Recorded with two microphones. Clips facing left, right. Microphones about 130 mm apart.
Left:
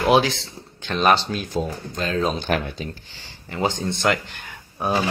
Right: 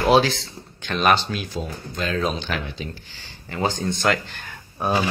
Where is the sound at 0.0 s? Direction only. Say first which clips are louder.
Even; 15° left (ahead or behind).